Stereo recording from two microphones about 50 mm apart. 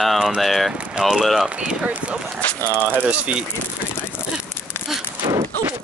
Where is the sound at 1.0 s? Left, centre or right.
Centre.